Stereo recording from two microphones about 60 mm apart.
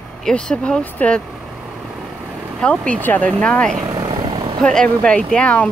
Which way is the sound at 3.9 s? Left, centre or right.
Right.